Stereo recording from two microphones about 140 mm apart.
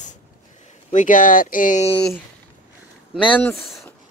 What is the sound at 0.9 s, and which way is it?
Speech, 70° left (ahead or behind).